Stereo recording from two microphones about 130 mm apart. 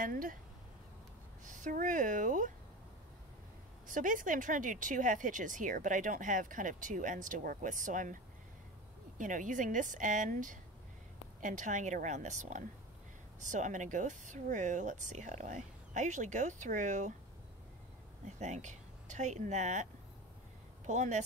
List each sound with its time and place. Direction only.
0.0 s speech: 90° right
1.4 s a woman's voice: 80° right
3.8 s speech: 90° right
9.2 s a woman's voice: 85° right
18.2 s speech: 65° right (ahead or behind)